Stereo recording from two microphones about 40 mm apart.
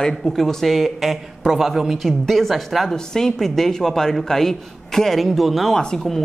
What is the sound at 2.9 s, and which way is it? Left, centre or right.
Speech, centre.